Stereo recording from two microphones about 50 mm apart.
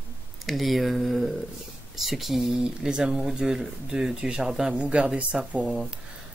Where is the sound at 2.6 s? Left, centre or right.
Centre.